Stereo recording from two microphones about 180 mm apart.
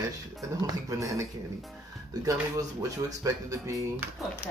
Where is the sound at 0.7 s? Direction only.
20° right (ahead or behind).